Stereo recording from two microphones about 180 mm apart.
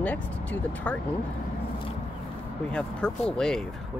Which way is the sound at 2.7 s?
5° left (ahead or behind).